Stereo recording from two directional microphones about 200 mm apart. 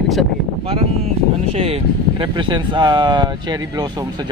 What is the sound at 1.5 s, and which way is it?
Speech, 30° right (ahead or behind).